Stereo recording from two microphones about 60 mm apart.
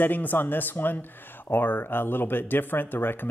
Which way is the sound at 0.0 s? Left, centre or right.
Left.